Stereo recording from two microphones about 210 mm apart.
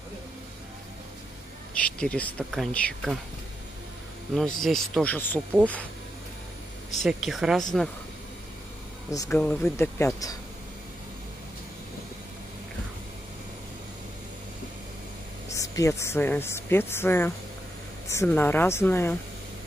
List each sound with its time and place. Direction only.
1.7 s speech: 5° left (ahead or behind)
4.4 s speech: centre (ahead or behind)
7.0 s speech: centre (ahead or behind)
9.1 s speech: 15° left (ahead or behind)
9.4 s speech: 5° left (ahead or behind)
15.5 s speech: 15° left (ahead or behind)